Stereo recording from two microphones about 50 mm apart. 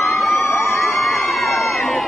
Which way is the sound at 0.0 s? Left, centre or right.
Left.